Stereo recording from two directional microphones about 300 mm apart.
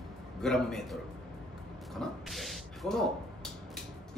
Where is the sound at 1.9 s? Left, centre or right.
Centre.